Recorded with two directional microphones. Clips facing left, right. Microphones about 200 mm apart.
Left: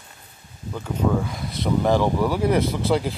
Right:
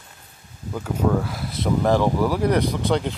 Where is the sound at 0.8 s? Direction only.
5° right (ahead or behind).